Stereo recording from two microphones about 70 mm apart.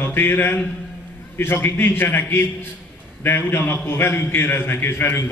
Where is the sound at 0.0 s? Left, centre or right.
Left.